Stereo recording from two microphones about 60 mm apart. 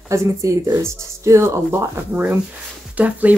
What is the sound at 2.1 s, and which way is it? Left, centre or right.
Speech, right.